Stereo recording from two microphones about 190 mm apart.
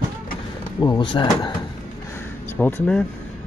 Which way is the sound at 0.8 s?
25° left (ahead or behind).